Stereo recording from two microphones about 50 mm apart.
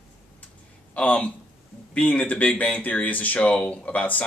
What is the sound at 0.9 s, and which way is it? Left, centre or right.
Speech, left.